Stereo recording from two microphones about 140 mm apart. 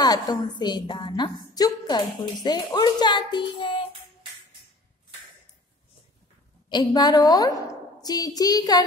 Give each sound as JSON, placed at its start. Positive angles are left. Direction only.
{"t": 0.0, "sound": "a woman's voice", "side_deg": 30}
{"t": 6.7, "sound": "a woman's voice", "side_deg": 30}